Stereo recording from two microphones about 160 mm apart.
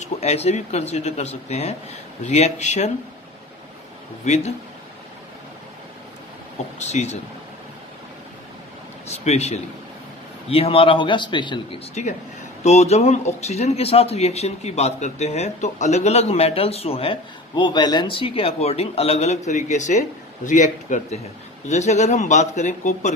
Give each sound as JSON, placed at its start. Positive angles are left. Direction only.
{"t": 0.0, "sound": "speech", "side_deg": 45}
{"t": 4.2, "sound": "speech", "side_deg": 45}
{"t": 6.8, "sound": "speech", "side_deg": 45}
{"t": 9.0, "sound": "speech", "side_deg": 45}
{"t": 11.9, "sound": "speech", "side_deg": 45}